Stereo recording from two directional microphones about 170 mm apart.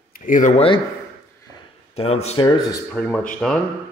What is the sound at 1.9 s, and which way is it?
Speech, 35° left (ahead or behind).